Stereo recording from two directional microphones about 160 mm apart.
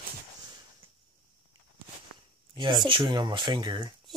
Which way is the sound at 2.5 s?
30° right (ahead or behind).